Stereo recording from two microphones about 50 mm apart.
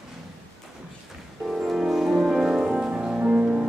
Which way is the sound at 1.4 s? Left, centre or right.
Centre.